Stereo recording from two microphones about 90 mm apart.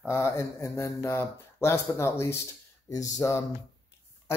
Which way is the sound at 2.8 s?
40° left (ahead or behind).